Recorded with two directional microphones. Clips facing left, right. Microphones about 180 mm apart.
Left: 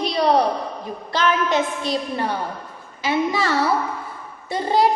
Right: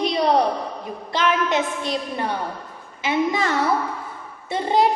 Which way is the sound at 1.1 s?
20° right (ahead or behind).